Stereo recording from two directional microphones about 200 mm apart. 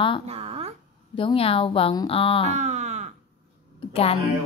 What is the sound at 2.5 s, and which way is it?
Wail, 35° right (ahead or behind).